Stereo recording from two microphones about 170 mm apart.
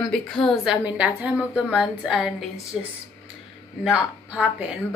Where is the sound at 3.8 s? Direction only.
5° right (ahead or behind).